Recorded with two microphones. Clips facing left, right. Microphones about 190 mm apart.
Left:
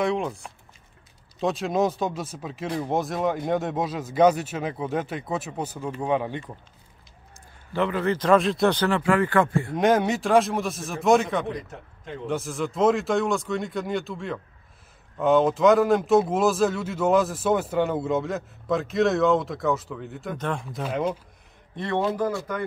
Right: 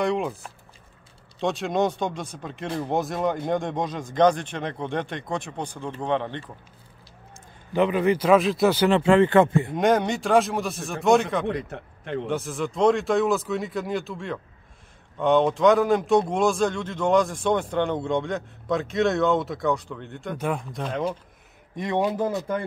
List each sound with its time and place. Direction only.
0.0 s speech: centre (ahead or behind)
7.7 s a man's voice: 15° right (ahead or behind)
8.8 s speech: 25° right (ahead or behind)
9.8 s speech: centre (ahead or behind)
11.4 s a man's voice: 65° right (ahead or behind)
12.3 s speech: centre (ahead or behind)
20.3 s a man's voice: 10° right (ahead or behind)
20.7 s speech: 5° left (ahead or behind)
21.7 s speech: 15° right (ahead or behind)